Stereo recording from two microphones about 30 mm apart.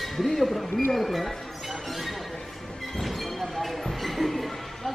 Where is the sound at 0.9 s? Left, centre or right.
Centre.